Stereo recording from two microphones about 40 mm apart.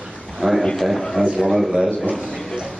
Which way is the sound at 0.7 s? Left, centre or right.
Centre.